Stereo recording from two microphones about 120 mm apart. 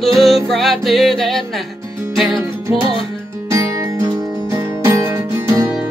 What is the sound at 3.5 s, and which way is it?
Music, 25° right (ahead or behind).